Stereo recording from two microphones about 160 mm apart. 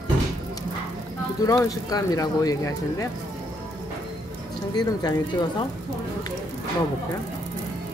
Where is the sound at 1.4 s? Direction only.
20° left (ahead or behind).